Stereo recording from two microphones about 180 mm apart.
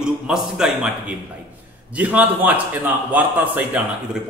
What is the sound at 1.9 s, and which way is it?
A man's voice, 10° right (ahead or behind).